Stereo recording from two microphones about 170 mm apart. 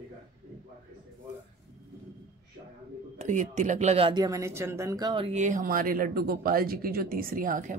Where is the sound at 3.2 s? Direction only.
45° right (ahead or behind).